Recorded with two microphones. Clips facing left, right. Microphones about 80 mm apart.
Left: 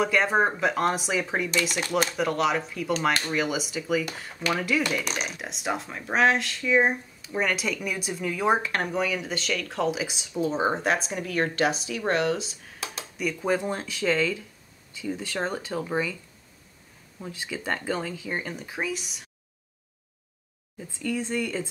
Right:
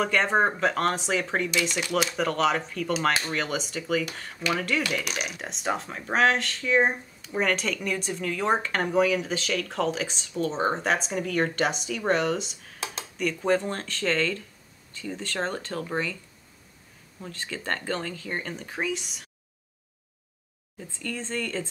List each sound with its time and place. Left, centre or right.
0.0 s speech: centre
1.6 s speech: left
2.1 s speech: centre
3.3 s speech: centre
5.0 s speech: centre
17.2 s speech: centre
21.0 s speech: centre